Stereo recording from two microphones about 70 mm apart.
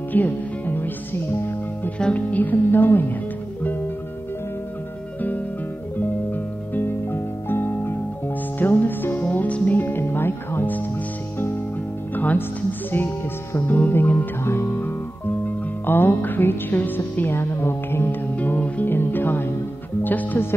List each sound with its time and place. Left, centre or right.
0.1 s music: left
2.0 s speech: centre
5.9 s music: left
13.7 s music: left
18.3 s music: left